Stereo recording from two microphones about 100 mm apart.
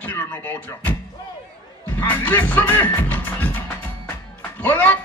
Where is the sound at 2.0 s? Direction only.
20° left (ahead or behind).